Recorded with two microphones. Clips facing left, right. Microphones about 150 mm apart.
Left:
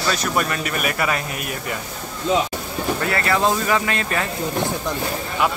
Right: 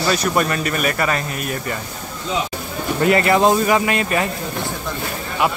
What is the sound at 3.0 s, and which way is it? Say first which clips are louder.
Speech: right 8 dB; 20° right (ahead or behind).